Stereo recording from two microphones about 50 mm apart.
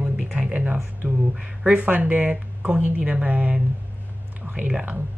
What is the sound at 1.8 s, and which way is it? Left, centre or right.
Speech, right.